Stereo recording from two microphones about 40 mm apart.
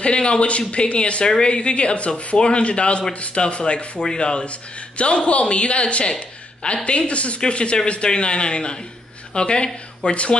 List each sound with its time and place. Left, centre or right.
0.0 s a man's voice: left